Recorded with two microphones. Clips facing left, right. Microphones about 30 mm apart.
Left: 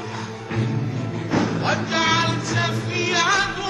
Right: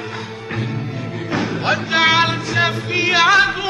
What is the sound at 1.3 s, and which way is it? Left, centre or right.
Music, right.